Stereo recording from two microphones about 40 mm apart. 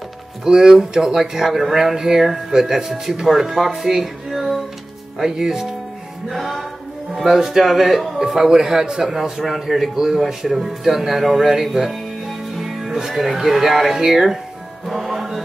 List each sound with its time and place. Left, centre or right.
0.5 s a man's voice: centre
9.9 s speech: centre
14.9 s music: centre